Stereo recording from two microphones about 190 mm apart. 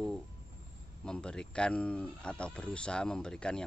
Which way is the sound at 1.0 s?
5° left (ahead or behind).